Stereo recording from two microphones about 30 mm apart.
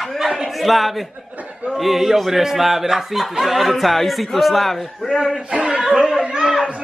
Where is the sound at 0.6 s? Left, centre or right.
Centre.